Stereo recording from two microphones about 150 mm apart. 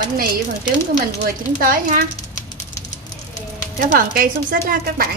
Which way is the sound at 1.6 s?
65° right (ahead or behind).